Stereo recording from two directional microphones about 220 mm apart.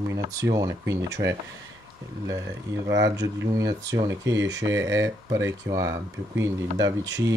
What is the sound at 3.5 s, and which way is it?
Speech, 15° right (ahead or behind).